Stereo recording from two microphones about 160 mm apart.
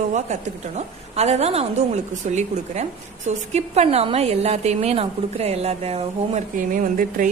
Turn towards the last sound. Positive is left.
turn(degrees=-60)  # may be behind; listen again after turning